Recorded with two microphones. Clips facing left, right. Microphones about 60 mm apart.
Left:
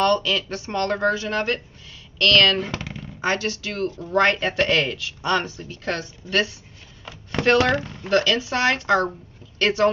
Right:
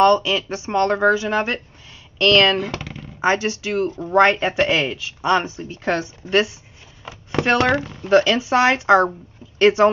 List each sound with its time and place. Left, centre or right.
0.0 s speech: centre
2.6 s a sound: centre
3.2 s speech: centre